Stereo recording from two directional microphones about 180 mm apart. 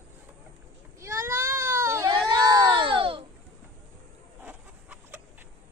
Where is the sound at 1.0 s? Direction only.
15° right (ahead or behind).